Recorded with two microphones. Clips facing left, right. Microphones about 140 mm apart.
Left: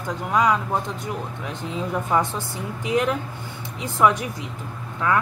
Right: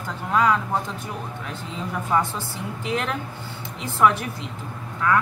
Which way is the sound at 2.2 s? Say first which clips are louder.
Left 1 dB; 20° left (ahead or behind).